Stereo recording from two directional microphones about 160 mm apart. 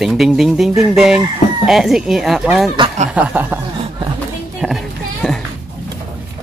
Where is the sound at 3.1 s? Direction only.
10° right (ahead or behind).